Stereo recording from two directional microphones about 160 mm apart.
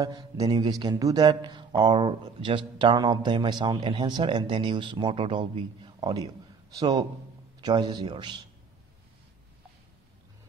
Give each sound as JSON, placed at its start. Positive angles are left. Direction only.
{"t": 0.0, "sound": "a man's voice", "side_deg": -20}